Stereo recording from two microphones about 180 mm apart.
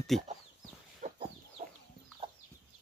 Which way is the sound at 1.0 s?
45° right (ahead or behind).